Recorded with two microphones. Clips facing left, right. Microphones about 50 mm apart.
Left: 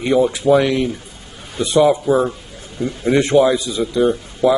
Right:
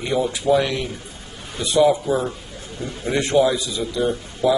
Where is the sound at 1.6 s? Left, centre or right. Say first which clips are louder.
Left 3 dB; left.